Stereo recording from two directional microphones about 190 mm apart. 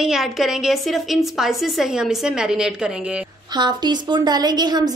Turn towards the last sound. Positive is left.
turn(degrees=-20)  # may be behind; listen again after turning